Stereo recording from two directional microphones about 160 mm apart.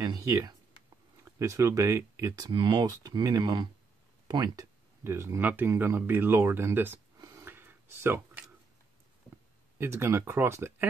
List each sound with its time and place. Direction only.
0.0 s speech: 20° right (ahead or behind)
7.2 s a sound: 15° right (ahead or behind)
9.8 s speech: 15° right (ahead or behind)